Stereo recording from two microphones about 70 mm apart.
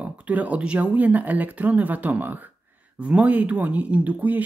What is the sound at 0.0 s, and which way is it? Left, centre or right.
Speech, right.